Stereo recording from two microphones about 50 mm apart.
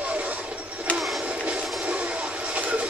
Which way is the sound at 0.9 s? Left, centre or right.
Left.